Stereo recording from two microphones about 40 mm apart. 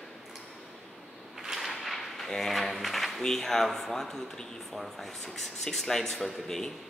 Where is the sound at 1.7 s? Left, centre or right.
Centre.